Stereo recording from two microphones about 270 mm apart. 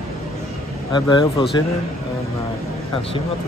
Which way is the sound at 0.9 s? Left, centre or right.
Centre.